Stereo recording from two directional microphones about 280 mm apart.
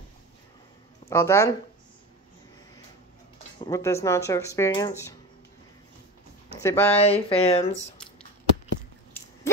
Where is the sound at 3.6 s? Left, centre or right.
Centre.